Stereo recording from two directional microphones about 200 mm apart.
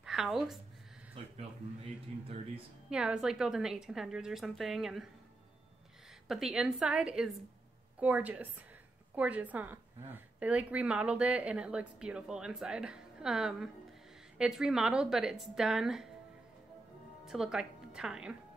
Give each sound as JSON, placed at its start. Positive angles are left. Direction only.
{"t": 0.0, "sound": "speech", "side_deg": 0}
{"t": 1.2, "sound": "speech", "side_deg": -30}
{"t": 2.9, "sound": "a woman's voice", "side_deg": -5}
{"t": 6.2, "sound": "a woman's voice", "side_deg": 0}
{"t": 17.2, "sound": "speech", "side_deg": 0}